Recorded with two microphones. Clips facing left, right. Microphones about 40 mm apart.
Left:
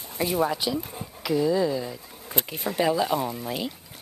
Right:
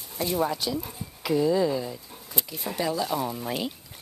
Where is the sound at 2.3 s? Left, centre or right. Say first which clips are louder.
Left 4 dB; left.